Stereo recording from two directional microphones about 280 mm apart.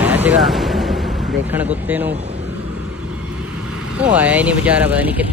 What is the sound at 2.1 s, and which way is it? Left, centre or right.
Speech, right.